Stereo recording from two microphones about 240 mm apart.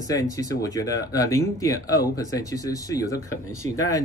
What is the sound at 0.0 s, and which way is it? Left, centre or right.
Speech, centre.